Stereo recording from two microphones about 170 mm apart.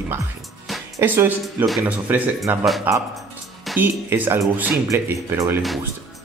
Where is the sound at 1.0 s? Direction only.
10° right (ahead or behind).